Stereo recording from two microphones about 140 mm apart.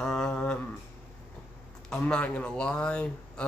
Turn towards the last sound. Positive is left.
turn(degrees=5)  # may be behind; listen again after turning